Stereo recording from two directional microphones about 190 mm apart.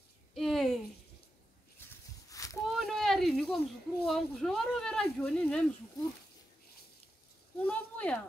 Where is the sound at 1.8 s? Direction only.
10° left (ahead or behind).